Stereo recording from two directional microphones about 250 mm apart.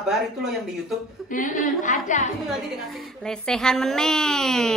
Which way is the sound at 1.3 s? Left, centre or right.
Left.